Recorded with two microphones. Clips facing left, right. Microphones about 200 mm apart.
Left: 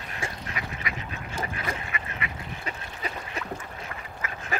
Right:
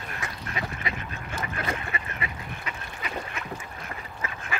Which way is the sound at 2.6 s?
35° left (ahead or behind).